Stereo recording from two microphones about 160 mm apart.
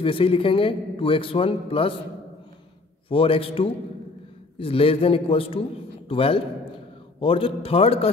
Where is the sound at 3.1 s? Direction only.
35° left (ahead or behind).